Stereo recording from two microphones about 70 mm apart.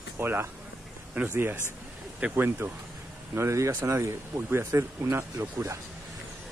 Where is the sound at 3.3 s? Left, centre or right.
Right.